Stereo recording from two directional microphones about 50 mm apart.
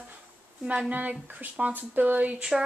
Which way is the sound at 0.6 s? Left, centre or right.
Centre.